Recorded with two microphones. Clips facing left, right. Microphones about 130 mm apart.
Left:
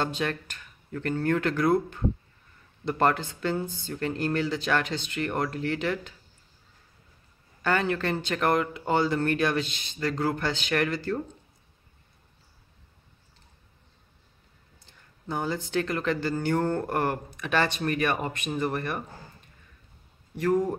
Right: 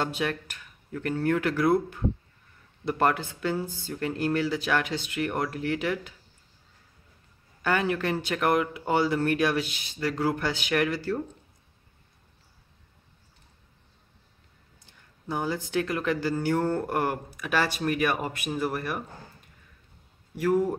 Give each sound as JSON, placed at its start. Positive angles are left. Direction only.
{"t": 0.0, "sound": "speech", "side_deg": -10}
{"t": 7.6, "sound": "speech", "side_deg": -10}
{"t": 15.2, "sound": "speech", "side_deg": -10}
{"t": 20.3, "sound": "speech", "side_deg": -10}